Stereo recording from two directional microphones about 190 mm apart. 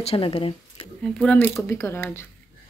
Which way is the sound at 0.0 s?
30° left (ahead or behind).